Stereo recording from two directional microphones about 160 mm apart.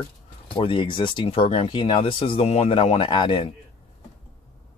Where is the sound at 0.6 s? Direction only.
30° left (ahead or behind).